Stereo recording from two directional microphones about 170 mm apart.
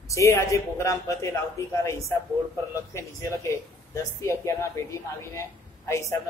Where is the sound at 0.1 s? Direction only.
20° left (ahead or behind).